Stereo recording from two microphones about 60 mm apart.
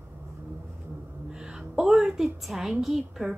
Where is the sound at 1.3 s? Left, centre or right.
Centre.